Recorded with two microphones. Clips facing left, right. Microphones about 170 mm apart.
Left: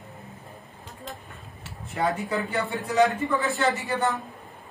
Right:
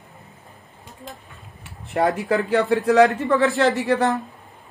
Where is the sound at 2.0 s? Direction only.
70° right (ahead or behind).